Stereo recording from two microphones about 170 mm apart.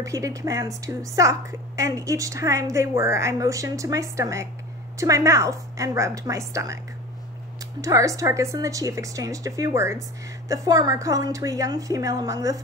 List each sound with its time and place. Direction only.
0.0 s a woman's voice: 20° right (ahead or behind)
7.8 s a woman's voice: 20° right (ahead or behind)